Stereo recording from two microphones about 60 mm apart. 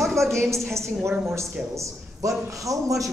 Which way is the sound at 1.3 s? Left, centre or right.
Right.